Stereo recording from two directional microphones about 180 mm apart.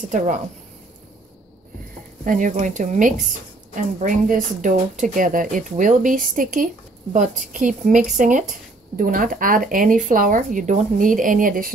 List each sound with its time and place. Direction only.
2.2 s speech: 45° right (ahead or behind)